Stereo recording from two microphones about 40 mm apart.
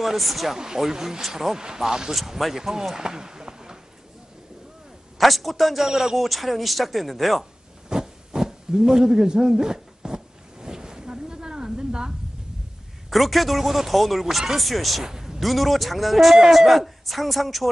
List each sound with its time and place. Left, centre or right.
0.0 s speech: centre
0.6 s a man's voice: centre
5.2 s speech: centre
5.9 s speech: centre
6.1 s speech: centre
7.9 s a sound: centre
13.1 s speech: centre
15.0 s a sound: centre
15.4 s speech: centre